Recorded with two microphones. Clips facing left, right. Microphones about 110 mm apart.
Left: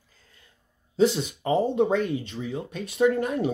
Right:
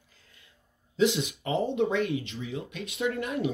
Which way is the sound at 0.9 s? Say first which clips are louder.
Left 3 dB; 35° left (ahead or behind).